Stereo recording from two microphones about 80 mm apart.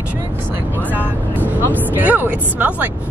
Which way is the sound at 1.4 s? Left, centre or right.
Right.